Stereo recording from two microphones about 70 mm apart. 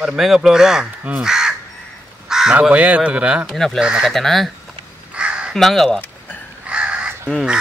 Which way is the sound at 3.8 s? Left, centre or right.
Centre.